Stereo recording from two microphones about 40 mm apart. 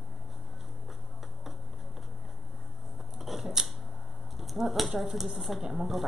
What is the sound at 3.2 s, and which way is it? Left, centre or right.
Scissors, centre.